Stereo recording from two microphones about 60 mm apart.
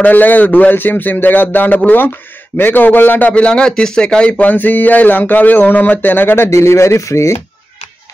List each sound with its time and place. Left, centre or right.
0.0 s a man's voice: left